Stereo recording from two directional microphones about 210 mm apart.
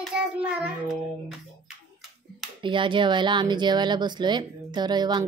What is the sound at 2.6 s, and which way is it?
Speech, 25° right (ahead or behind).